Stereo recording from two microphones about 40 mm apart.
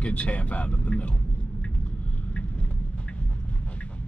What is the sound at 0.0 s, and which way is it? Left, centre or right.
Speech, left.